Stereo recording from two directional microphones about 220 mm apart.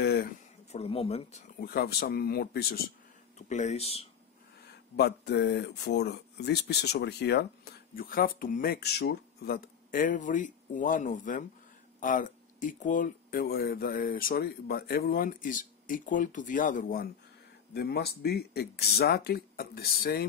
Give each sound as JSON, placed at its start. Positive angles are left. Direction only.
{"t": 0.0, "sound": "a sound", "side_deg": 45}
{"t": 0.7, "sound": "speech", "side_deg": 25}
{"t": 3.3, "sound": "speech", "side_deg": 30}
{"t": 4.6, "sound": "speech", "side_deg": 50}